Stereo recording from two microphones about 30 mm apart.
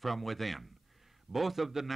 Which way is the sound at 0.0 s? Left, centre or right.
Centre.